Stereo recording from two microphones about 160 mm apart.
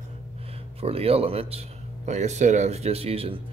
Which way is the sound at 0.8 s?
40° right (ahead or behind).